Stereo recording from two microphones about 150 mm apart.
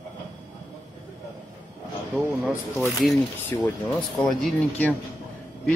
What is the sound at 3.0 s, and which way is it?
Speech, centre (ahead or behind).